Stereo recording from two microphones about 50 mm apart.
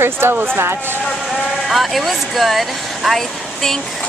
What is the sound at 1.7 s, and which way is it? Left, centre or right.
Speech, centre.